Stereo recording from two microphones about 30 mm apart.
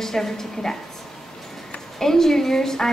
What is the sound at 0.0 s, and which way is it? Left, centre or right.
Speech, centre.